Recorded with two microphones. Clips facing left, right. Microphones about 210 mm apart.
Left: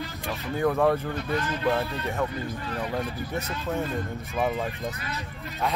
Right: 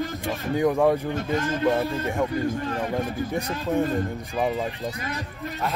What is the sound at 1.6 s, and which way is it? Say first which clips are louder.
Speech: right 4 dB; 15° right (ahead or behind).